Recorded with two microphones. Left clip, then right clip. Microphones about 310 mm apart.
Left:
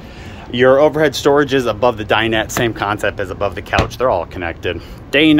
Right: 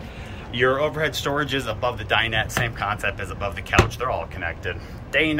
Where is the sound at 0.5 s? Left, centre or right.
Centre.